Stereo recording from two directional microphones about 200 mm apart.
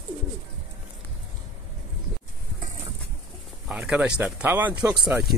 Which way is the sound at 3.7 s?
5° right (ahead or behind).